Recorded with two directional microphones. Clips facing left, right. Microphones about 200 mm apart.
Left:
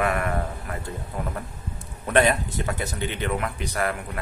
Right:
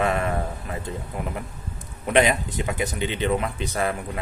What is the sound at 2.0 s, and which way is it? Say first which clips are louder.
Speech: even; 15° right (ahead or behind).